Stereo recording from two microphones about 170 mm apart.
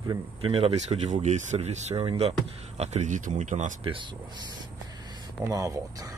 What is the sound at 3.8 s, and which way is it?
Speech, 30° right (ahead or behind).